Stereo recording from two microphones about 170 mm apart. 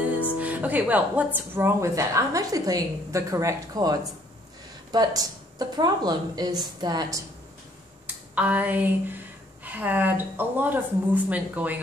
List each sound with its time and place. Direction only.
0.4 s a woman's voice: 10° right (ahead or behind)
8.4 s speech: 10° right (ahead or behind)